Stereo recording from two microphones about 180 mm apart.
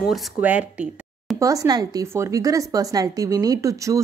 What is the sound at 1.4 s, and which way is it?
Speech, 20° right (ahead or behind).